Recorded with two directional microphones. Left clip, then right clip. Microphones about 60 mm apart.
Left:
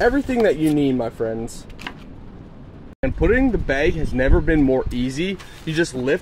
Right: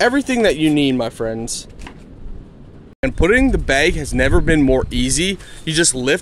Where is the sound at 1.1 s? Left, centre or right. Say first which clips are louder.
Right 1 dB; right.